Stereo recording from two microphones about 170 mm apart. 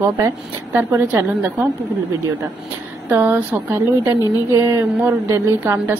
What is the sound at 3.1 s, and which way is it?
A woman's voice, 10° right (ahead or behind).